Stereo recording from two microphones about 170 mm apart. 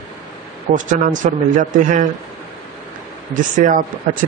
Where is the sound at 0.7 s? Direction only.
50° right (ahead or behind).